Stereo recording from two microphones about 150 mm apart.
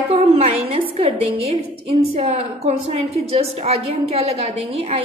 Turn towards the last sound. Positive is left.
turn(degrees=-40)  # may be behind; listen again after turning